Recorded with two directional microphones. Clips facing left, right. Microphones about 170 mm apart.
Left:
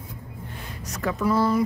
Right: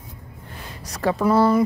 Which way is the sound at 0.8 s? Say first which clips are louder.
Right 5 dB; 35° right (ahead or behind).